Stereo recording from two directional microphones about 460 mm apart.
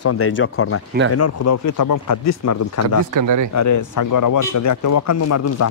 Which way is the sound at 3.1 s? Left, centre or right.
Right.